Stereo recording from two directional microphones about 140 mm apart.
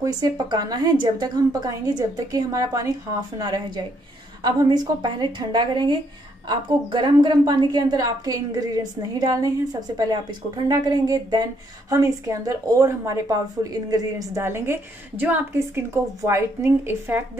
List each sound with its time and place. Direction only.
0.0 s a woman's voice: 30° right (ahead or behind)